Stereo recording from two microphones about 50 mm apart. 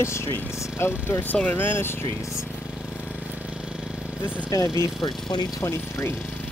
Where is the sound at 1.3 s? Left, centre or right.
Left.